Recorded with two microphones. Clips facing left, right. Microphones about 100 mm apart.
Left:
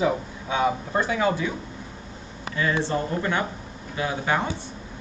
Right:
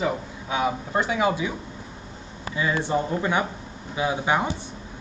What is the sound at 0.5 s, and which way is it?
A man's voice, 10° right (ahead or behind).